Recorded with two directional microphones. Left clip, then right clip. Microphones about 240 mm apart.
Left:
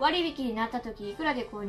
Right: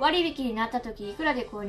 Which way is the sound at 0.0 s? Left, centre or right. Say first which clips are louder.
Right 2 dB; centre.